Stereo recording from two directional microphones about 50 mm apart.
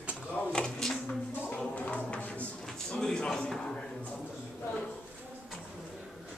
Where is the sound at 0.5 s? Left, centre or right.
Centre.